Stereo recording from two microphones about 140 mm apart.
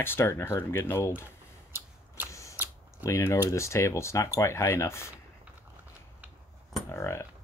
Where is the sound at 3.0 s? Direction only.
20° left (ahead or behind).